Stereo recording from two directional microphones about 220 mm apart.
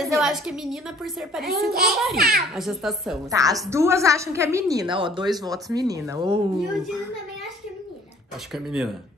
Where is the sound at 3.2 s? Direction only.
15° right (ahead or behind).